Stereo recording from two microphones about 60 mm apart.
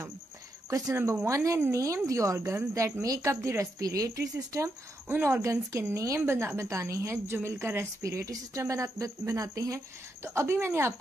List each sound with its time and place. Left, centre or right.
0.7 s speech: right
0.9 s speech: right
1.2 s a woman's voice: right
5.0 s speech: right
5.3 s a woman's voice: right
8.0 s speech: right
10.2 s a woman's voice: right